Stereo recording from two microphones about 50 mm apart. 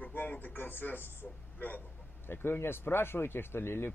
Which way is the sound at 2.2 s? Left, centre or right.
Left.